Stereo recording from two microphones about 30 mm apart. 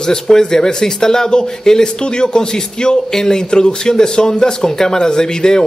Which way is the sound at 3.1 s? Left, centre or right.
Centre.